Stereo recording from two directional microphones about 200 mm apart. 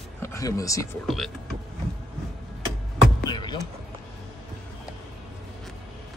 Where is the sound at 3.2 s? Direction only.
20° left (ahead or behind).